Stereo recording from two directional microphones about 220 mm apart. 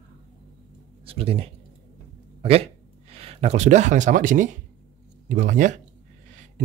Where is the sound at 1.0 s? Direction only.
25° right (ahead or behind).